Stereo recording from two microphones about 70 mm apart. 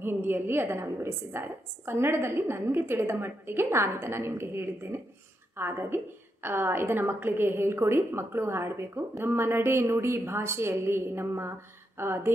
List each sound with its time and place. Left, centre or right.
0.0 s a woman's voice: right